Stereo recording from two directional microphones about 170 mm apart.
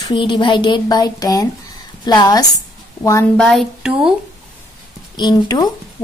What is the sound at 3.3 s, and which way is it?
Speech, 5° left (ahead or behind).